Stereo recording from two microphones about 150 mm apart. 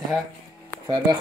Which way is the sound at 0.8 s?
30° right (ahead or behind).